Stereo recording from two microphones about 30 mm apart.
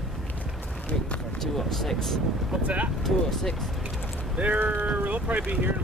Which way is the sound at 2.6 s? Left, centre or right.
Right.